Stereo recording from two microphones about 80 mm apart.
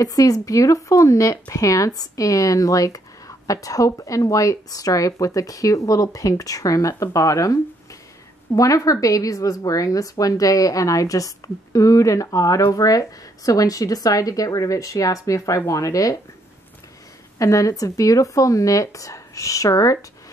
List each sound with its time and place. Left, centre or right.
0.0 s a woman's voice: left
17.4 s a woman's voice: left